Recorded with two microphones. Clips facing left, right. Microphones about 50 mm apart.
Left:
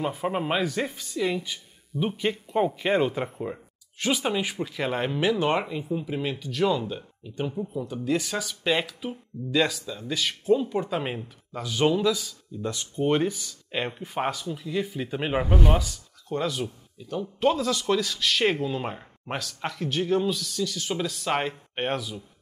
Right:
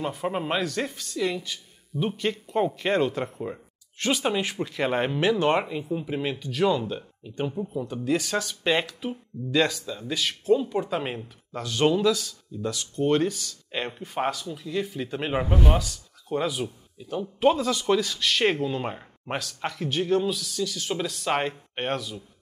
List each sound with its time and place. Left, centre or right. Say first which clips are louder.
0.0 s speech: left 1 dB; centre